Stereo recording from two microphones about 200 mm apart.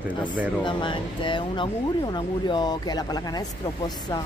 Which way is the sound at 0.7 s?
25° left (ahead or behind).